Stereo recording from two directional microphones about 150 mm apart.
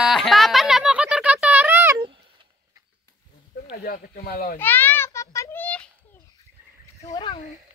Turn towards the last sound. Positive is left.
turn(degrees=30)  # may be behind; listen again after turning